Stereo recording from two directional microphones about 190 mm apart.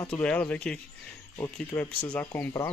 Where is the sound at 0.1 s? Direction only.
5° left (ahead or behind).